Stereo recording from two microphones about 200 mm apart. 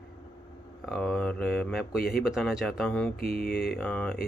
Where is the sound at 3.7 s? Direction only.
5° left (ahead or behind).